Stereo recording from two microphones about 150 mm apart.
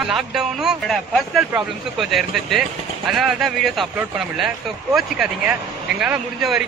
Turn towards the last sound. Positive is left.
turn(degrees=-5)  # may be behind; listen again after turning